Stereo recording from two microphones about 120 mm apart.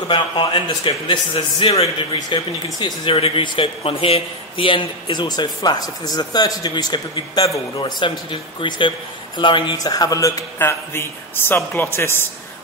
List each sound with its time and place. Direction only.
0.1 s speech: 45° left (ahead or behind)
2.1 s speech: 35° left (ahead or behind)
7.8 s speech: 40° left (ahead or behind); by 12.3 s 20° left (ahead or behind)